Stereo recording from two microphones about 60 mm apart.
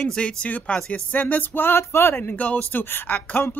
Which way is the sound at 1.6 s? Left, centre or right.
Left.